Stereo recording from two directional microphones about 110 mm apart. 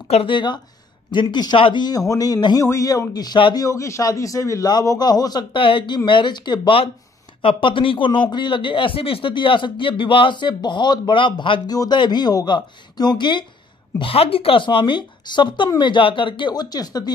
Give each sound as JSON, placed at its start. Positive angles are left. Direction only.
{"t": 0.1, "sound": "a man's voice", "side_deg": 55}
{"t": 3.6, "sound": "a man's voice", "side_deg": 30}
{"t": 13.9, "sound": "speech", "side_deg": 60}